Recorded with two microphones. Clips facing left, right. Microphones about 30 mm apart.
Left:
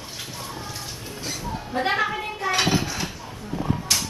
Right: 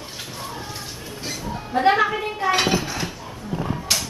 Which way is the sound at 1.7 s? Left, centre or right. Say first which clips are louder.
Right 6 dB; centre.